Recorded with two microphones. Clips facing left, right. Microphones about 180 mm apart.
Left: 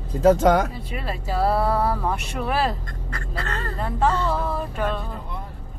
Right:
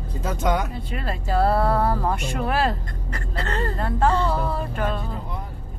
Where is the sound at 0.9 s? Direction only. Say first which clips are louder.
Right 2 dB; 5° left (ahead or behind).